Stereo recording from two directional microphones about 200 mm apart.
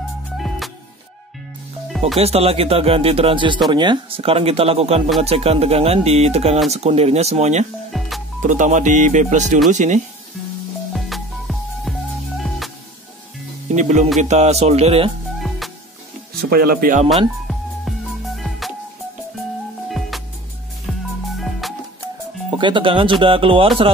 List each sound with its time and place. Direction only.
2.1 s speech: 30° right (ahead or behind)
7.9 s music: centre (ahead or behind)
8.4 s speech: 40° right (ahead or behind)
10.9 s music: centre (ahead or behind)
13.7 s speech: 35° right (ahead or behind)
15.3 s music: centre (ahead or behind)
16.3 s speech: 50° right (ahead or behind)
17.5 s music: centre (ahead or behind)
21.4 s music: centre (ahead or behind)
22.6 s speech: 25° right (ahead or behind)